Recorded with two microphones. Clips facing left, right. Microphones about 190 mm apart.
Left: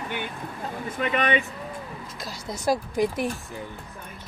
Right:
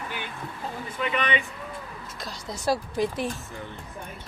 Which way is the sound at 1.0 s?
45° left (ahead or behind).